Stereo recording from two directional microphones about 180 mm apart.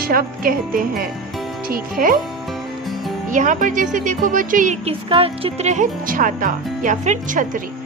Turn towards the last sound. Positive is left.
turn(degrees=-45)  # may be behind; listen again after turning